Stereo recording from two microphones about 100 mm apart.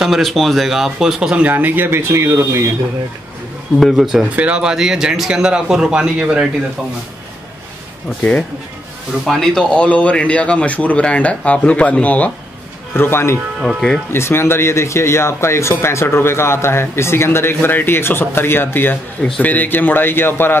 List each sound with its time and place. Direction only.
0.0 s speech: centre (ahead or behind); by 2.7 s 25° right (ahead or behind)
3.8 s speech: centre (ahead or behind)
8.2 s a man's voice: 10° left (ahead or behind)
9.2 s a man's voice: centre (ahead or behind); by 13.4 s 25° left (ahead or behind)
13.6 s speech: centre (ahead or behind)
14.1 s speech: 25° left (ahead or behind)